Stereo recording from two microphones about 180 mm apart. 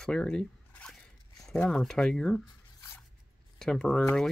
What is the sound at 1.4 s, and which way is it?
Speech, 5° left (ahead or behind).